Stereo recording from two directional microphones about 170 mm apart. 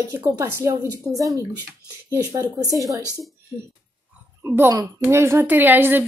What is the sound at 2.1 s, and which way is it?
Speech, 20° right (ahead or behind).